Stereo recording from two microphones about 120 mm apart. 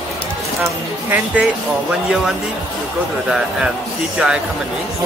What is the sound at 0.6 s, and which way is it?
Speech, 15° right (ahead or behind).